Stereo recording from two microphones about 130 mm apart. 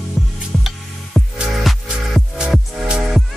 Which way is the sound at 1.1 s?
Centre (ahead or behind).